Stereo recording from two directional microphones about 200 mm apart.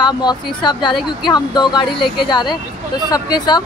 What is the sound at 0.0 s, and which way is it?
Speech, 20° left (ahead or behind).